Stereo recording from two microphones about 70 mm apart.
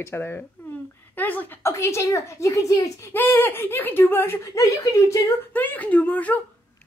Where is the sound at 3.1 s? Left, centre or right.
Left.